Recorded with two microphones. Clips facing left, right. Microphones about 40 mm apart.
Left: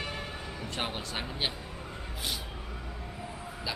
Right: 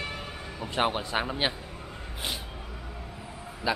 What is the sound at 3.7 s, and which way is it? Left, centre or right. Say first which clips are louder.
Speech: right 9 dB; right.